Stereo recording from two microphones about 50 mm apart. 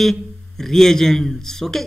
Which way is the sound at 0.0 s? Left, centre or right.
Centre.